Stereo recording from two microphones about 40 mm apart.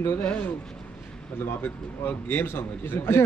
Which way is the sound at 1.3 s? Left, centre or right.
Left.